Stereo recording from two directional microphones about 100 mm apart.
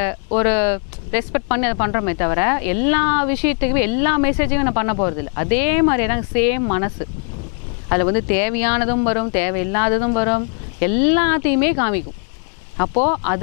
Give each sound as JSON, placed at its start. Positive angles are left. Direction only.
{"t": 0.0, "sound": "speech", "side_deg": 15}